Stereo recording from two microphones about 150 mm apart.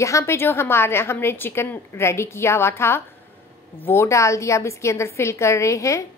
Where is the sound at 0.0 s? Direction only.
20° left (ahead or behind).